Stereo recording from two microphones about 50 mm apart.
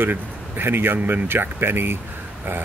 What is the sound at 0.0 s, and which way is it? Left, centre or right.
Speech, right.